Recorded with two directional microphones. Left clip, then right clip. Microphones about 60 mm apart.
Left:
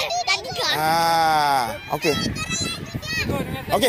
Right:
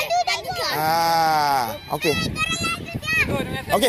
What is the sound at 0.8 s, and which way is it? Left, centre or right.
Sheep, centre.